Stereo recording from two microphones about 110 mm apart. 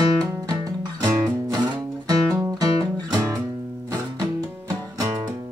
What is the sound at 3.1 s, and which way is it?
Music, 30° right (ahead or behind).